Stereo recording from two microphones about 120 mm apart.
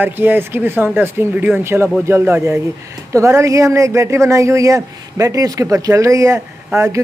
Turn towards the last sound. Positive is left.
turn(degrees=-25)  # may be behind; listen again after turning